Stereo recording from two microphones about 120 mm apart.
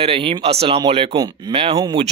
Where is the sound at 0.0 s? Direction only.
50° right (ahead or behind).